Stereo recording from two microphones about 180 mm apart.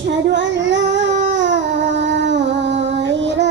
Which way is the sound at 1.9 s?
75° right (ahead or behind).